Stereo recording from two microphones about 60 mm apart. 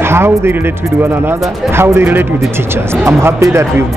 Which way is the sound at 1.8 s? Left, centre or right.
Right.